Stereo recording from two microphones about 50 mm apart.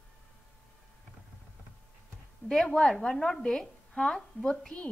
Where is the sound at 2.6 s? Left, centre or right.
Centre.